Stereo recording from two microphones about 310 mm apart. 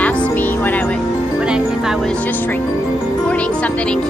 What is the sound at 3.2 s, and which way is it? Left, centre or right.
Speech, centre.